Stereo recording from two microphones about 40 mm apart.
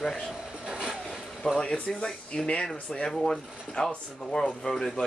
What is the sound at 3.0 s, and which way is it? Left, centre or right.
Speech, centre.